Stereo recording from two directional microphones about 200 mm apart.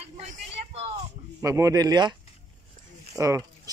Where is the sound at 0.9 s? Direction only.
15° right (ahead or behind).